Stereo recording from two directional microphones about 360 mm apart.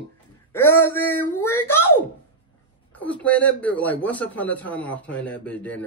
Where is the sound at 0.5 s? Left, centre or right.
Centre.